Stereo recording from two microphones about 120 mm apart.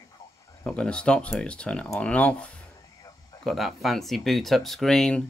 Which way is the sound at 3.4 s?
Centre (ahead or behind).